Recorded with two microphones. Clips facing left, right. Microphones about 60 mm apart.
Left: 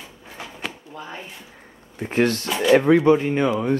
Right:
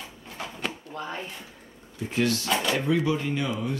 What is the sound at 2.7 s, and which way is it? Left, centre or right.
Speech, left.